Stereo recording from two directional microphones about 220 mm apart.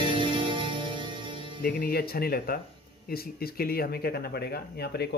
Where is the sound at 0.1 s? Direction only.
20° right (ahead or behind).